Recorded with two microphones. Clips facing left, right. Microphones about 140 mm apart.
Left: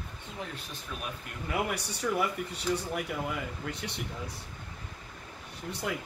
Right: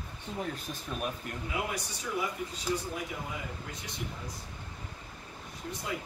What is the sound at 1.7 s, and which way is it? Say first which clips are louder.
Speech: left 4 dB; 65° left (ahead or behind).